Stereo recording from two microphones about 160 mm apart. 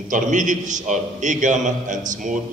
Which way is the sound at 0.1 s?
50° right (ahead or behind).